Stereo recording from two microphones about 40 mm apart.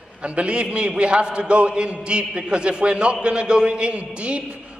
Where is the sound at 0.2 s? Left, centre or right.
Right.